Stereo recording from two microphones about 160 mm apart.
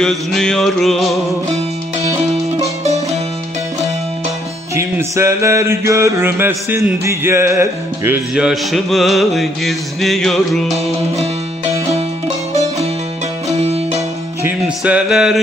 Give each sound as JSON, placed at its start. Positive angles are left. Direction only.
{"t": 0.0, "sound": "music", "side_deg": 0}
{"t": 4.7, "sound": "music", "side_deg": -15}
{"t": 8.4, "sound": "music", "side_deg": 0}
{"t": 14.4, "sound": "music", "side_deg": -10}